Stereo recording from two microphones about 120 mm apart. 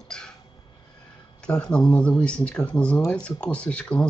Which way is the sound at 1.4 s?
10° left (ahead or behind).